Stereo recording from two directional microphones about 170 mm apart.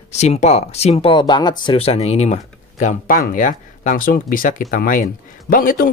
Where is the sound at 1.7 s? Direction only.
35° left (ahead or behind).